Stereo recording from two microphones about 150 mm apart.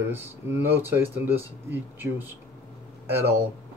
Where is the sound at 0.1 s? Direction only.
15° right (ahead or behind).